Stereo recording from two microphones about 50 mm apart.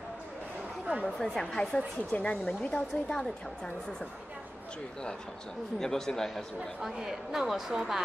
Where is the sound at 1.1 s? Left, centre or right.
Centre.